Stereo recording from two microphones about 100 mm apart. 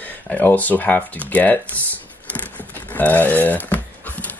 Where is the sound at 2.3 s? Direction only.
15° left (ahead or behind).